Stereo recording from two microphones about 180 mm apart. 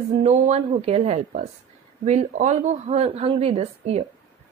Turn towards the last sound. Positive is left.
turn(degrees=-35)  # may be behind; listen again after turning